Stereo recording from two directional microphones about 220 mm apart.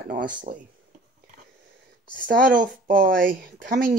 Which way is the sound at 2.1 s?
40° right (ahead or behind).